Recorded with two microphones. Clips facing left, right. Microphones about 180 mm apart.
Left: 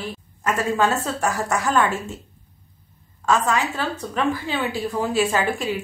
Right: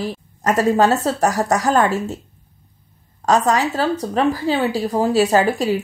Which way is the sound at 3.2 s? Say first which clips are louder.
Right 4 dB; 40° right (ahead or behind).